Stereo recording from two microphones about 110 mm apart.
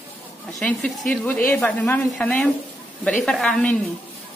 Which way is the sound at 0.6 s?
10° left (ahead or behind).